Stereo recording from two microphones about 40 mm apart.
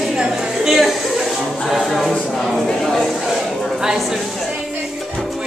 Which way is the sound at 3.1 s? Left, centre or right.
Centre.